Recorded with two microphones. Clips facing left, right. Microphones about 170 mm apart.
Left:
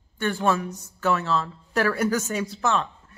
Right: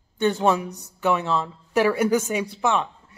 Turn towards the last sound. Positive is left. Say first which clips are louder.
# right 1 dB
turn(degrees=-15)  # may be behind; listen again after turning